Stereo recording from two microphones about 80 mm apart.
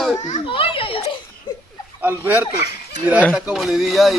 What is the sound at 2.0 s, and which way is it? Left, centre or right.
Speech, right.